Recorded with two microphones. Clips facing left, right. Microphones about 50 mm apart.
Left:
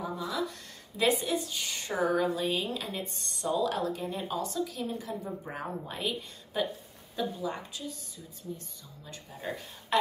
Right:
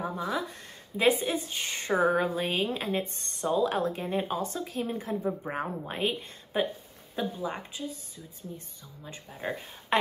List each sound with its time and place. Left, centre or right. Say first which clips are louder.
0.0 s a sound: right 2 dB; right
0.9 s speech: right 2 dB; right
9.0 s speech: right 3 dB; right